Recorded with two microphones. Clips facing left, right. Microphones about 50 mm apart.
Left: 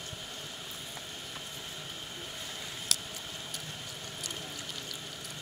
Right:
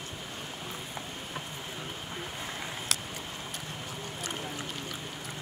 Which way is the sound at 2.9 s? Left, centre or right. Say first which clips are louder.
Right 2 dB; right.